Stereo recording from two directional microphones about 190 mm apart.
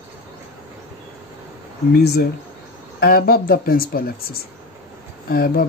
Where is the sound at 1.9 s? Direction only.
55° left (ahead or behind).